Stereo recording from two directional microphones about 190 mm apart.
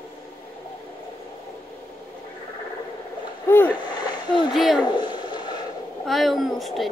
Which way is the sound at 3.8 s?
20° left (ahead or behind).